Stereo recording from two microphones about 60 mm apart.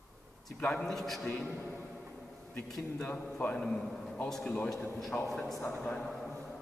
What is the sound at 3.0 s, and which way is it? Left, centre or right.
Speech, left.